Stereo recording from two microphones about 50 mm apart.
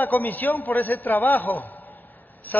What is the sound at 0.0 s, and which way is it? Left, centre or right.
A man's voice, left.